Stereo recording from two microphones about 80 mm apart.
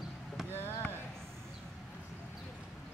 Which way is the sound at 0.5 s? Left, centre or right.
Left.